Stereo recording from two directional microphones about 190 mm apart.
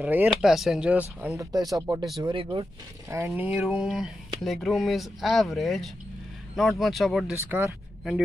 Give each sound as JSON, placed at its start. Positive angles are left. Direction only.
{"t": 0.0, "sound": "speech", "side_deg": -10}
{"t": 3.3, "sound": "speech", "side_deg": -5}
{"t": 7.3, "sound": "speech", "side_deg": -15}